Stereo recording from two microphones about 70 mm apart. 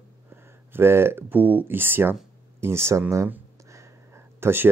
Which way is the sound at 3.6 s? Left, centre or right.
Right.